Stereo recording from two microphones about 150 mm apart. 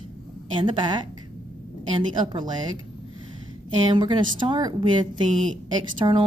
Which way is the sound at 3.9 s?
30° right (ahead or behind).